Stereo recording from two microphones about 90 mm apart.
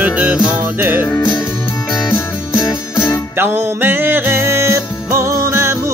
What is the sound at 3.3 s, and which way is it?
Music, 20° right (ahead or behind).